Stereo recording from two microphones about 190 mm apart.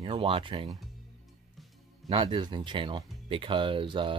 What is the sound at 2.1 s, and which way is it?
Speech, 25° right (ahead or behind).